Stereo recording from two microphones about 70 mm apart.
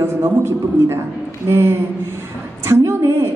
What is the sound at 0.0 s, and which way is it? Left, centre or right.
A woman's voice, right.